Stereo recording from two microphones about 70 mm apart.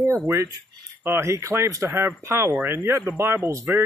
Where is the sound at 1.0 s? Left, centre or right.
Right.